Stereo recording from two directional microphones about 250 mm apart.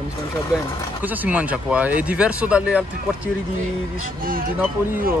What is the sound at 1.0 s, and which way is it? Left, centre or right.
Speech, centre.